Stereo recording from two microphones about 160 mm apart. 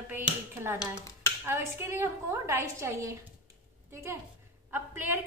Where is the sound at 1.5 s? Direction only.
15° right (ahead or behind).